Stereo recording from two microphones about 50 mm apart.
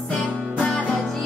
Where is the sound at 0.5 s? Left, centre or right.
Left.